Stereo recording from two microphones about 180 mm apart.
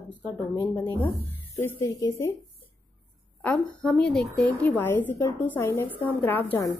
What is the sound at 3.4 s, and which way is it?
A woman's voice, 10° left (ahead or behind).